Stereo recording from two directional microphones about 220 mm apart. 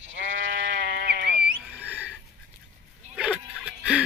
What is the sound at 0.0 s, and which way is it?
Sheep, 60° right (ahead or behind).